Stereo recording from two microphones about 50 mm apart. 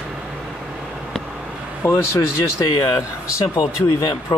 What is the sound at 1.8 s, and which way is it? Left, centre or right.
Speech, left.